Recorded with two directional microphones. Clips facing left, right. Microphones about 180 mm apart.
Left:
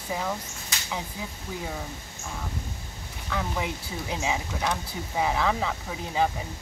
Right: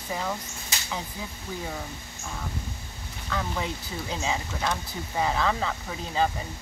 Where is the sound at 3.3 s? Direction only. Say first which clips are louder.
Even; 10° left (ahead or behind).